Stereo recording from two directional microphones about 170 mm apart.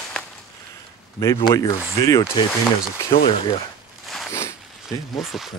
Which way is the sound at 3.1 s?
35° left (ahead or behind).